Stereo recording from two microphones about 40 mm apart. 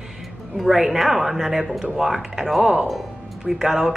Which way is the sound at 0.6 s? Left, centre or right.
Centre.